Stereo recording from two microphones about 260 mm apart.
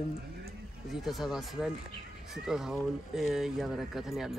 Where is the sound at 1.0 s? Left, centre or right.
Centre.